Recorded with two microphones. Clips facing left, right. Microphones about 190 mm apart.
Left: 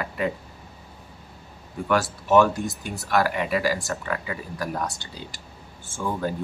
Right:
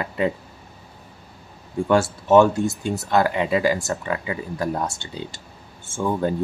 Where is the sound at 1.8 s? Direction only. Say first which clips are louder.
Right 5 dB; 25° right (ahead or behind).